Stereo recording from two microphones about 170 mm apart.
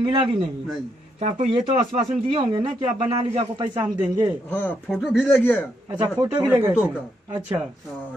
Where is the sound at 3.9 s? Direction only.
15° right (ahead or behind).